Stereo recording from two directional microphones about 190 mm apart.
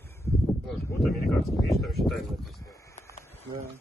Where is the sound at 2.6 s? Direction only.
15° left (ahead or behind).